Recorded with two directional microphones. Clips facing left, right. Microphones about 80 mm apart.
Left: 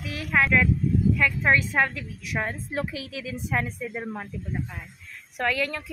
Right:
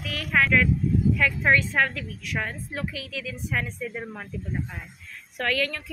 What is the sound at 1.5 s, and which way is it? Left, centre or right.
Speech, centre.